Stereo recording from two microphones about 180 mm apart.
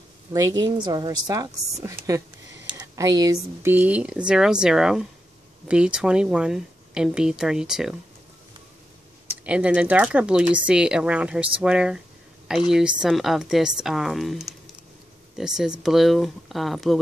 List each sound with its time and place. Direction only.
0.3 s a woman's voice: 20° right (ahead or behind); by 7.9 s 5° right (ahead or behind)
9.4 s speech: 5° right (ahead or behind)